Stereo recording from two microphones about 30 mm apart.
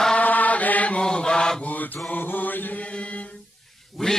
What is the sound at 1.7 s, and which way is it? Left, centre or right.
Mantra, left.